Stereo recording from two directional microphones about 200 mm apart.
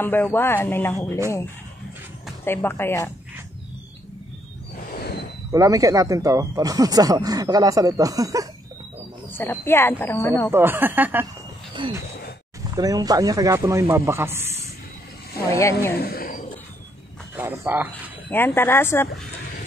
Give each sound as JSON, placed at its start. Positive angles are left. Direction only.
{"t": 0.0, "sound": "speech", "side_deg": 10}
{"t": 2.4, "sound": "speech", "side_deg": 10}
{"t": 5.5, "sound": "speech", "side_deg": -15}
{"t": 9.3, "sound": "speech", "side_deg": 10}
{"t": 10.5, "sound": "speech", "side_deg": -10}
{"t": 11.8, "sound": "a sound", "side_deg": -25}
{"t": 12.7, "sound": "speech", "side_deg": -20}
{"t": 15.9, "sound": "speech", "side_deg": 50}
{"t": 17.4, "sound": "speech", "side_deg": -10}
{"t": 18.3, "sound": "speech", "side_deg": 10}